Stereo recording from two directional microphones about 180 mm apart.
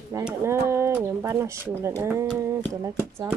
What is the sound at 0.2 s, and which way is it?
Speech, 15° right (ahead or behind).